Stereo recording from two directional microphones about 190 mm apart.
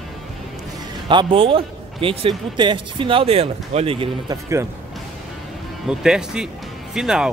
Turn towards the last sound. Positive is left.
turn(degrees=-5)  # may be behind; listen again after turning